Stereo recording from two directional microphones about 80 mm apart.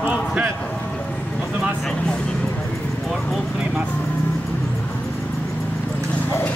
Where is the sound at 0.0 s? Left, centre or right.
Centre.